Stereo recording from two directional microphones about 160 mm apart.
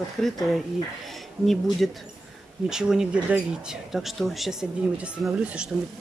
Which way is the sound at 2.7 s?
5° right (ahead or behind).